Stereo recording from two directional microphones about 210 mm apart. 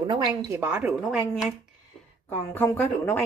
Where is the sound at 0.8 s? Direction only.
Centre (ahead or behind).